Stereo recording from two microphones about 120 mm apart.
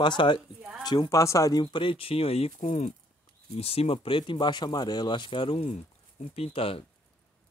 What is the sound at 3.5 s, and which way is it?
Speech, 55° left (ahead or behind).